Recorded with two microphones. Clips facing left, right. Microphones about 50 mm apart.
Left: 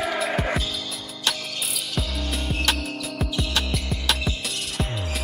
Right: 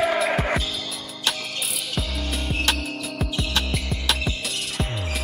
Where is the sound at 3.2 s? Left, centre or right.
Centre.